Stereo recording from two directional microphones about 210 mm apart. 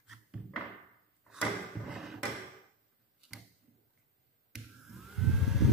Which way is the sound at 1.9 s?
Centre (ahead or behind).